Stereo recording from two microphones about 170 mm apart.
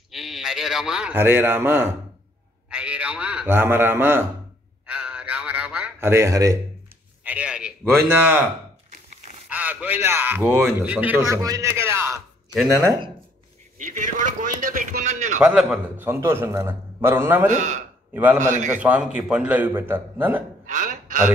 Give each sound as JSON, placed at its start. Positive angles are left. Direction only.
{"t": 0.1, "sound": "a man's voice", "side_deg": 0}
{"t": 4.8, "sound": "a sound", "side_deg": -5}
{"t": 7.2, "sound": "a man's voice", "side_deg": -5}
{"t": 9.5, "sound": "a man's voice", "side_deg": -10}
{"t": 13.7, "sound": "a man's voice", "side_deg": -45}
{"t": 15.4, "sound": "a man's voice", "side_deg": -5}
{"t": 17.5, "sound": "a man's voice", "side_deg": -45}
{"t": 18.1, "sound": "a man's voice", "side_deg": -10}
{"t": 18.4, "sound": "a man's voice", "side_deg": -45}
{"t": 18.7, "sound": "a man's voice", "side_deg": -10}
{"t": 20.6, "sound": "a man's voice", "side_deg": -45}